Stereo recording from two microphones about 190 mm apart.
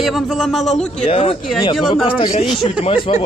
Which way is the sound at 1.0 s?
30° left (ahead or behind).